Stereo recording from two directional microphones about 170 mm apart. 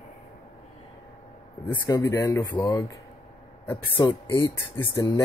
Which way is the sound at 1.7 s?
20° left (ahead or behind).